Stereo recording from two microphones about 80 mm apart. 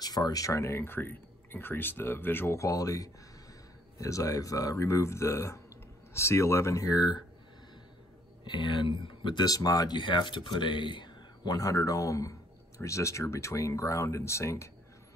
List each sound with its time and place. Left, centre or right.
0.0 s speech: left
8.5 s speech: left
9.9 s speech: left
11.5 s speech: left